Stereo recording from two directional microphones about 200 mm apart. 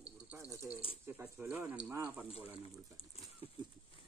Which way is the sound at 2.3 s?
30° left (ahead or behind).